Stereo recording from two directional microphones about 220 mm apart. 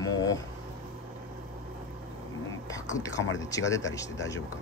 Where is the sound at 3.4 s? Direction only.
15° left (ahead or behind).